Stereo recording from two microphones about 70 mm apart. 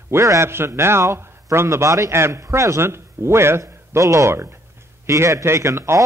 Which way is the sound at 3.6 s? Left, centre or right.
Right.